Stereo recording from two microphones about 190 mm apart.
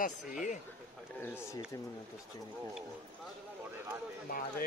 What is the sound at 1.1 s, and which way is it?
Speech, 10° left (ahead or behind).